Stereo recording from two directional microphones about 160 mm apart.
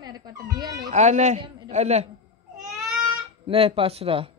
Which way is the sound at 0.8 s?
45° right (ahead or behind).